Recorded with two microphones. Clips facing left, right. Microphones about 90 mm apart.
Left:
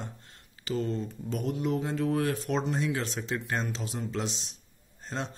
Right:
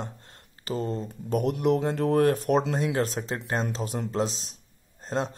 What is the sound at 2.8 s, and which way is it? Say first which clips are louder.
A man's voice: right 4 dB; 45° right (ahead or behind).